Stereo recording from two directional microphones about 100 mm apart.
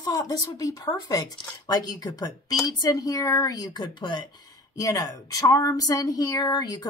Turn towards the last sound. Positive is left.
turn(degrees=45)  # may be behind; listen again after turning